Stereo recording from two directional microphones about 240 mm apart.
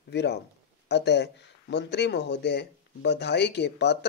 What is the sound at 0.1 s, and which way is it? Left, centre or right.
A man's voice, left.